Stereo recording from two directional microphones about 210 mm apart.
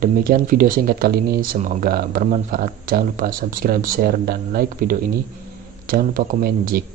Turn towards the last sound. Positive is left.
turn(degrees=-45)  # may be behind; listen again after turning